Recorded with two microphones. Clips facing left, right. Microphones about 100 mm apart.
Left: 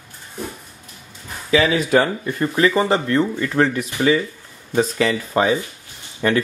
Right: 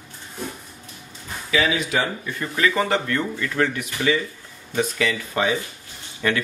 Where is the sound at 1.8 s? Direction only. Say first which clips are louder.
Left 7 dB; 45° left (ahead or behind).